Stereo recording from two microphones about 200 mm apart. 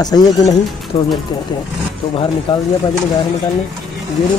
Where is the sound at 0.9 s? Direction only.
30° left (ahead or behind).